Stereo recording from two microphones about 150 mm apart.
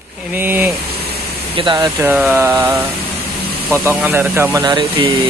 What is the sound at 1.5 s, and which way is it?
Speech, 30° right (ahead or behind).